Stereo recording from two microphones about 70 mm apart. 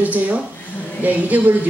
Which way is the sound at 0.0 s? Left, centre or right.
Right.